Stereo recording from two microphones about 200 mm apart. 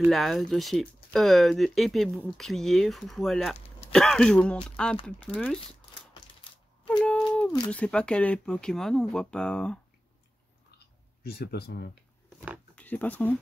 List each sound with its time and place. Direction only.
0.0 s speech: centre (ahead or behind)
7.0 s a sound: 5° left (ahead or behind)
7.7 s speech: 5° left (ahead or behind)
11.2 s speech: 50° left (ahead or behind)
12.7 s speech: 5° left (ahead or behind)